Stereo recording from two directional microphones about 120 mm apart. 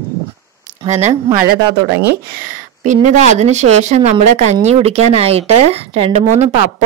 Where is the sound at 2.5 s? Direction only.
90° right.